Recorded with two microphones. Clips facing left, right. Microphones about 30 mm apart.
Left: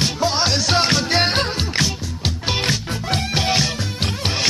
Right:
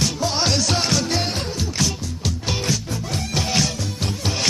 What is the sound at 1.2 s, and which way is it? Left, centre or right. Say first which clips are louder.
Music: left 6 dB; left.